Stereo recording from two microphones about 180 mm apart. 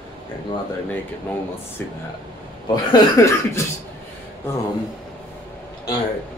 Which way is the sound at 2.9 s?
15° left (ahead or behind).